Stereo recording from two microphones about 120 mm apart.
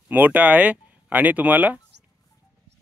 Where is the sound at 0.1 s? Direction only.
15° right (ahead or behind).